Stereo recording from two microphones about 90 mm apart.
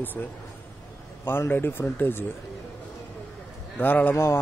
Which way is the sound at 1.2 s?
25° left (ahead or behind).